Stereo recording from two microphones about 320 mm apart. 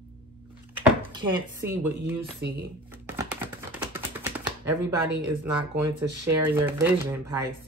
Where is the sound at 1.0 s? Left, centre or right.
Centre.